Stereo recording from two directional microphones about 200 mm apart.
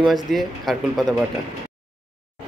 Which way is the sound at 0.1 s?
Centre (ahead or behind).